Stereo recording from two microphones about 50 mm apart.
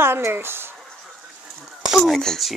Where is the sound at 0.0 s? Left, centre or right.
Right.